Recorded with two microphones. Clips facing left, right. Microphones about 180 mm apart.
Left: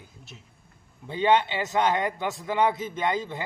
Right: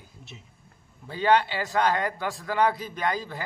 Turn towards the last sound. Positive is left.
turn(degrees=20)  # may be behind; listen again after turning